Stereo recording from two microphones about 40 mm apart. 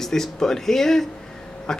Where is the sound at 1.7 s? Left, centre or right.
Centre.